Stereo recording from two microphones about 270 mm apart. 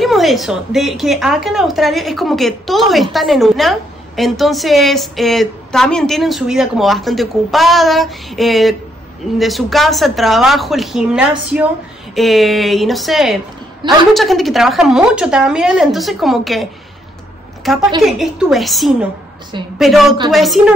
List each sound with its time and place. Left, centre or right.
0.0 s a woman's voice: centre
17.6 s a woman's voice: centre